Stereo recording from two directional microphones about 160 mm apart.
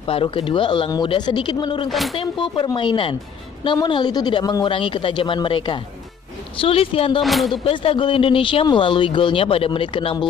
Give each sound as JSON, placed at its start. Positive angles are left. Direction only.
{"t": 0.0, "sound": "speech", "side_deg": 35}
{"t": 1.9, "sound": "speech", "side_deg": 0}
{"t": 2.1, "sound": "speech", "side_deg": 30}
{"t": 7.2, "sound": "speech", "side_deg": 0}
{"t": 7.5, "sound": "speech", "side_deg": 35}